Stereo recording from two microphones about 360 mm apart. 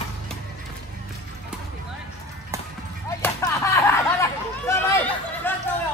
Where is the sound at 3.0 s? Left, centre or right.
Centre.